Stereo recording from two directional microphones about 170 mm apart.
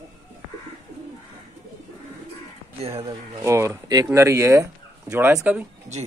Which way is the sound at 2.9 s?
20° right (ahead or behind).